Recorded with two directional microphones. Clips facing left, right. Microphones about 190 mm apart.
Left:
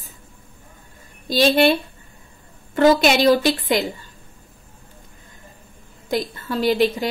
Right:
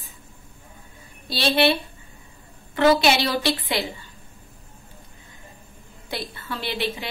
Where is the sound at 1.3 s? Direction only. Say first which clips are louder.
Left 5 dB; 45° left (ahead or behind).